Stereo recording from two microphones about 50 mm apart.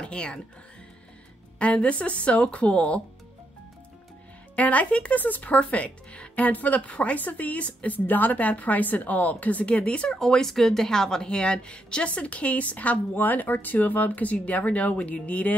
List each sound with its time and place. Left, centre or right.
0.0 s speech: left
1.6 s speech: left
4.6 s speech: left
10.0 s speech: centre; by 15.5 s left